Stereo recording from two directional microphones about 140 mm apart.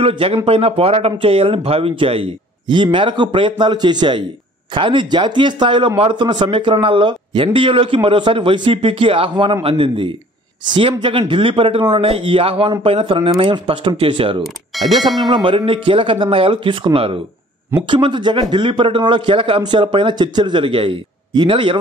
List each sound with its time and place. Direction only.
0.0 s speech: 40° right (ahead or behind)
14.4 s speech: centre (ahead or behind)
15.2 s speech: 35° right (ahead or behind)